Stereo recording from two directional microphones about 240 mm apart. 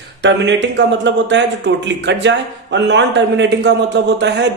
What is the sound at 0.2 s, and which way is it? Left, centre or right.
Speech, right.